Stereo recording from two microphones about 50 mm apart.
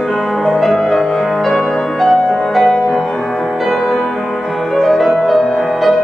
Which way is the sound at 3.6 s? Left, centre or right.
Centre.